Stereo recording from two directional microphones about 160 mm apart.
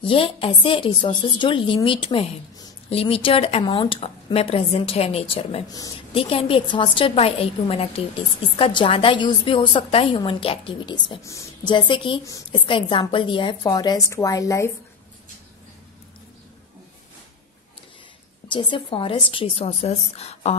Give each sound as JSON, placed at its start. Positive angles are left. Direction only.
{"t": 0.0, "sound": "a woman's voice", "side_deg": 35}
{"t": 11.2, "sound": "a woman's voice", "side_deg": 20}
{"t": 11.7, "sound": "a woman's voice", "side_deg": 30}
{"t": 18.5, "sound": "a woman's voice", "side_deg": 30}